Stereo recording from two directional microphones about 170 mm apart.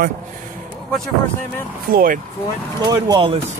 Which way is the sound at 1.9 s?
55° right (ahead or behind).